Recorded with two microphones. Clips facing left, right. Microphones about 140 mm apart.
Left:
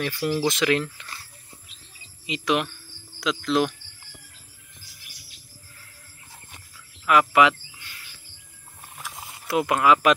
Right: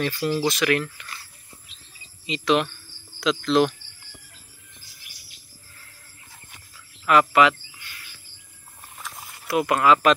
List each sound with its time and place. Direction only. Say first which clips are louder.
0.0 s speech: right 1 dB; 10° left (ahead or behind)
0.5 s speech: even; 20° left (ahead or behind)
2.2 s speech: right 3 dB; 10° left (ahead or behind)
7.1 s speech: right 1 dB; 15° left (ahead or behind)
9.7 s speech: right 1 dB; 15° left (ahead or behind)